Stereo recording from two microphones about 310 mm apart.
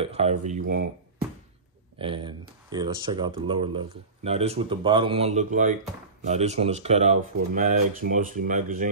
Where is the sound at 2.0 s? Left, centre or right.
Centre.